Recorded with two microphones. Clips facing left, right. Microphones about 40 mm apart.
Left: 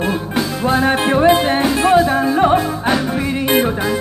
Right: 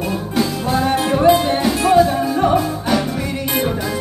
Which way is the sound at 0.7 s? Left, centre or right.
Left.